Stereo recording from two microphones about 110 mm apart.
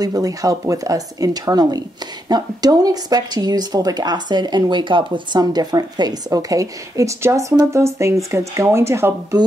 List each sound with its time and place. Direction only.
0.0 s speech: 35° right (ahead or behind)